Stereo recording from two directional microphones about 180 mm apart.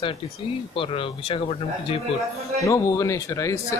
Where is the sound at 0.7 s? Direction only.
30° left (ahead or behind).